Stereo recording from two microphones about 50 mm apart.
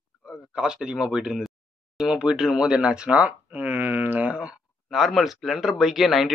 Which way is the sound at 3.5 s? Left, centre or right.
Right.